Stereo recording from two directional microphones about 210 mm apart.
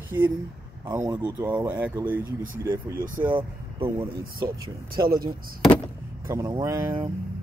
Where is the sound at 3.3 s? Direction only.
25° right (ahead or behind).